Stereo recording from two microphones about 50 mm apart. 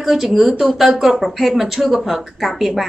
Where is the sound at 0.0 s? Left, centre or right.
Centre.